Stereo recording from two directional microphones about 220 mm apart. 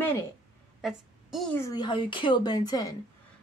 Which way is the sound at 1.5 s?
15° left (ahead or behind).